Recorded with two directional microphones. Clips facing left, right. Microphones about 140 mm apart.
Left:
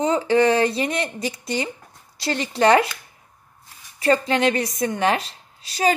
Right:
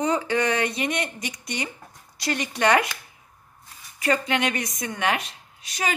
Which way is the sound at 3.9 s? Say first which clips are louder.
Left 5 dB; 30° left (ahead or behind).